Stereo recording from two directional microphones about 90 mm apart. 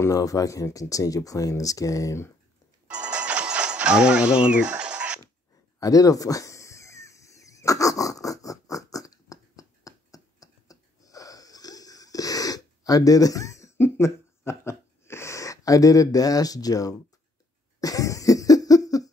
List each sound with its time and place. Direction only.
0.0 s speech: 40° left (ahead or behind)
2.9 s music: 10° right (ahead or behind)
5.8 s a sound: 40° left (ahead or behind)
17.7 s cough: 40° left (ahead or behind)